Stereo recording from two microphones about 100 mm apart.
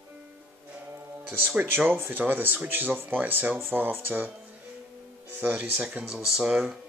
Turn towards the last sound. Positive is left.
turn(degrees=-10)  # may be behind; listen again after turning